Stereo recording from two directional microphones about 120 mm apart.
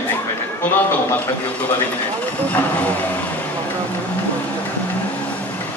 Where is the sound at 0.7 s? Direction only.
15° left (ahead or behind).